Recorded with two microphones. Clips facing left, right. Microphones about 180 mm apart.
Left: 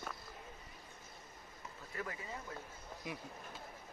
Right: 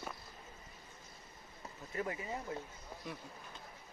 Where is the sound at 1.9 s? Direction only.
25° right (ahead or behind).